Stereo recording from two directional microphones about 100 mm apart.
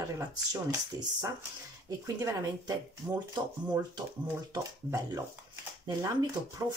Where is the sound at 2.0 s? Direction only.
35° right (ahead or behind).